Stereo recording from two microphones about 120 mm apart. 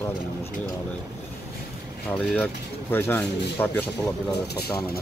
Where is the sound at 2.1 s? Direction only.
10° left (ahead or behind).